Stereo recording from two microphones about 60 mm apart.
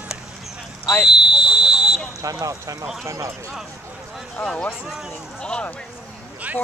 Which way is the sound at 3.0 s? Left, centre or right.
Right.